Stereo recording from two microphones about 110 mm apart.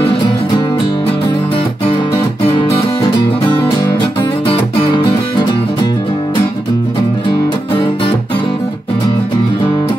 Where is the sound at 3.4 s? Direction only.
40° left (ahead or behind).